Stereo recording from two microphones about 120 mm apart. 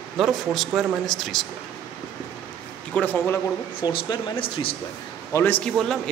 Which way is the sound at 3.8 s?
40° left (ahead or behind).